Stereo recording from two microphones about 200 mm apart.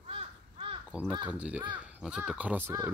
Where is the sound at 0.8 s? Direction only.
5° right (ahead or behind).